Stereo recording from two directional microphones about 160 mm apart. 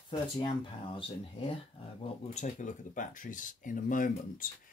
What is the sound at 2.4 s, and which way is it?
Speech, 55° left (ahead or behind).